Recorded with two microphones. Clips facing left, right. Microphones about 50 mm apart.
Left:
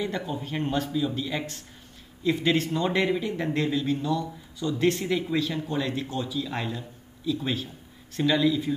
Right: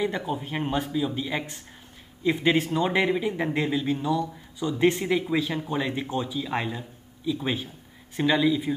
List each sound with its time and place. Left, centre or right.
0.0 s speech: centre